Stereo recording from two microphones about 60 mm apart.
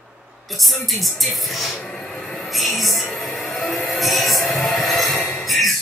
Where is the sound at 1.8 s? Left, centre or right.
Centre.